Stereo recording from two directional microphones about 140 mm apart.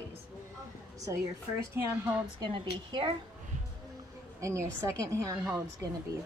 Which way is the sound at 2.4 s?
35° right (ahead or behind).